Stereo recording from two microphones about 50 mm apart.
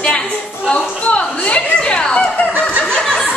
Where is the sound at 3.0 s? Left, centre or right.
Centre.